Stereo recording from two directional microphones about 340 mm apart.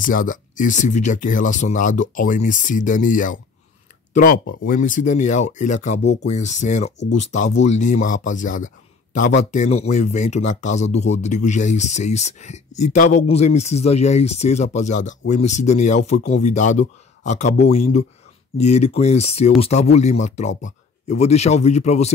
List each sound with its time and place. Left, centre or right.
0.0 s speech: left